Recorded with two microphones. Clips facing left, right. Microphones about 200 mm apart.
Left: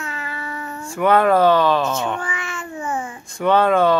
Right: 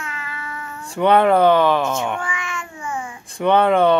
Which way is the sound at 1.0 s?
20° right (ahead or behind).